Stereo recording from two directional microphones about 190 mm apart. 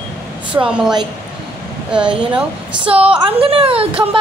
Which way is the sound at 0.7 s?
5° right (ahead or behind).